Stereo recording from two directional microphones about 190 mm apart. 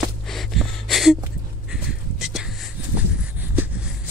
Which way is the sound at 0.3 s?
Centre (ahead or behind).